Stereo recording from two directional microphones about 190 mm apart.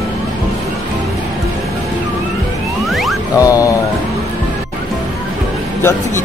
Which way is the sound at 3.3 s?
20° left (ahead or behind).